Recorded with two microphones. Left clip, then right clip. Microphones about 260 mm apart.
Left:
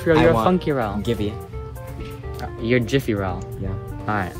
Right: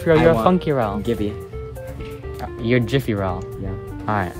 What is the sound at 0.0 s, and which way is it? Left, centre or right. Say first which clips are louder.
Speech: right 1 dB; right.